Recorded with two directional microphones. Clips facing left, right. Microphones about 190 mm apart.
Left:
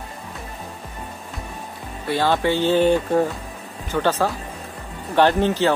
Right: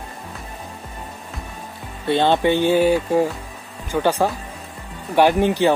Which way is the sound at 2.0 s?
25° right (ahead or behind).